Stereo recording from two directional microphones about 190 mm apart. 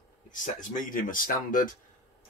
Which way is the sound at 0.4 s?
45° left (ahead or behind).